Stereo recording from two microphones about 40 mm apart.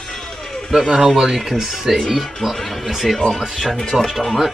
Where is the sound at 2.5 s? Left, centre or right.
Centre.